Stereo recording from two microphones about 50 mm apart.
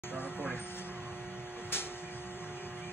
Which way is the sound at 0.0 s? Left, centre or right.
Left.